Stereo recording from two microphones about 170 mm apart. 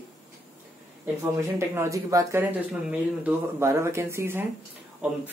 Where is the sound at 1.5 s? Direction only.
15° right (ahead or behind).